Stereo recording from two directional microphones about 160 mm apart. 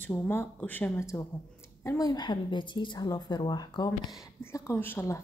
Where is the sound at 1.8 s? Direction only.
25° left (ahead or behind).